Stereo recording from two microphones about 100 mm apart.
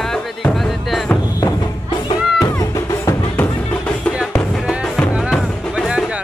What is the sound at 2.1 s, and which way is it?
Music, 35° left (ahead or behind).